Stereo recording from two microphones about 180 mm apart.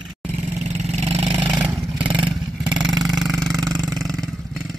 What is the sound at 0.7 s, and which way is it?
Vehicle, 35° right (ahead or behind).